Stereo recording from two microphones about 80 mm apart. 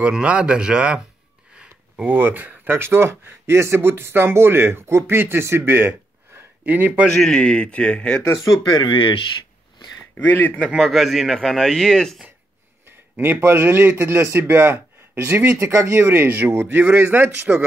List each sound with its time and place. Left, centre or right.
0.0 s speech: centre
1.6 s a sound: centre
2.1 s speech: right
7.3 s speech: centre
8.2 s speech: left
8.8 s speech: left
10.1 s speech: left
10.8 s speech: centre
12.8 s a man's voice: right
15.7 s speech: right; by 17.6 s centre